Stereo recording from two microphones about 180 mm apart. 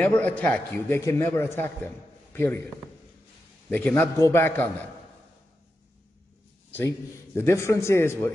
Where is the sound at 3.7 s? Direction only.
10° left (ahead or behind).